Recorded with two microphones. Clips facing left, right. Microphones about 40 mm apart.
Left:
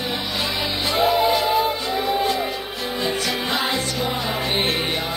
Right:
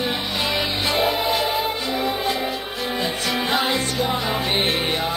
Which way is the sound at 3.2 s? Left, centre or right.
Right.